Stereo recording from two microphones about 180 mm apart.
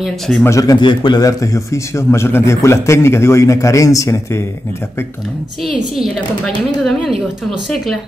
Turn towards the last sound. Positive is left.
turn(degrees=0)  # may be behind; listen again after turning